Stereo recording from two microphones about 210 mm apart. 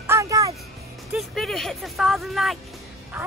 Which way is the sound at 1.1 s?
Centre (ahead or behind).